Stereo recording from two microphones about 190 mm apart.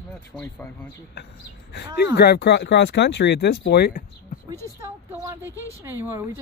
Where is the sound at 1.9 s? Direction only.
60° left (ahead or behind).